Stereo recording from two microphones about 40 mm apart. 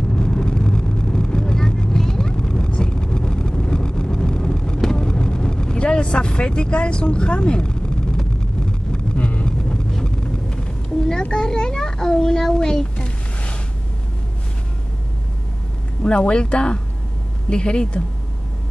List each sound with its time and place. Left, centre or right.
0.1 s vehicle: left
9.5 s a sound: centre
16.0 s speech: left